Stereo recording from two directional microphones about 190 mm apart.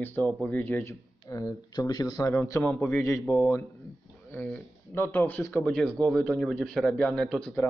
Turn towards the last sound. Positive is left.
turn(degrees=10)  # may be behind; listen again after turning